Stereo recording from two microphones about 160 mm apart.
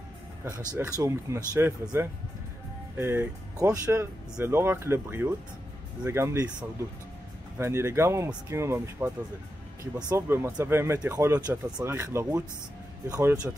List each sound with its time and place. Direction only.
0.7 s speech: 15° right (ahead or behind)
7.5 s speech: 15° right (ahead or behind)